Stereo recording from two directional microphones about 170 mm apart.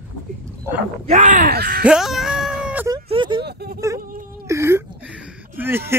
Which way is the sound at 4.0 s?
55° right (ahead or behind).